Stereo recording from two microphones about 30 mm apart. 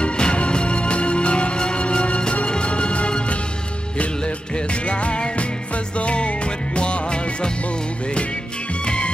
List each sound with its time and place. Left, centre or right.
0.0 s music: left
4.8 s music: left
8.8 s music: left